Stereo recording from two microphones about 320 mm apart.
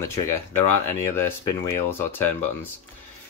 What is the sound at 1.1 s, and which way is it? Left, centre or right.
Speech, centre.